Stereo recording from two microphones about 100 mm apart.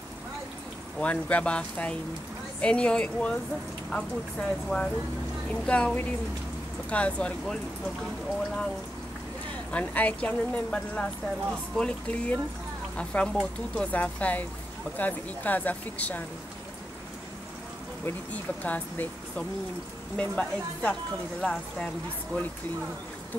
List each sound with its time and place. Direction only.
0.9 s speech: 15° left (ahead or behind)
9.7 s speech: 15° left (ahead or behind)
18.3 s speech: 15° left (ahead or behind)